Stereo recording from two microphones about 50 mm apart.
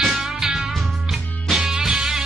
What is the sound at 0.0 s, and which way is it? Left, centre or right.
Music, centre.